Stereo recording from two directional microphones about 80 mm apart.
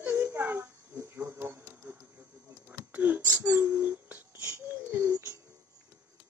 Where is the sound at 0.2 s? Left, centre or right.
Right.